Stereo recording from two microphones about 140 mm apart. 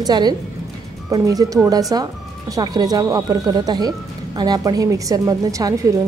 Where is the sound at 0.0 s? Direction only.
30° right (ahead or behind).